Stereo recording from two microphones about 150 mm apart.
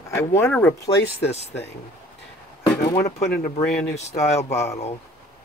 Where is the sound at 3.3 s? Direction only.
90° left.